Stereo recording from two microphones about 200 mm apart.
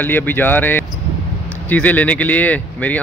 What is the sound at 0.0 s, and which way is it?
Speech, 10° left (ahead or behind).